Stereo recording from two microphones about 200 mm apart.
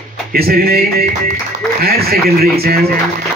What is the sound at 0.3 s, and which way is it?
Speech, 50° right (ahead or behind).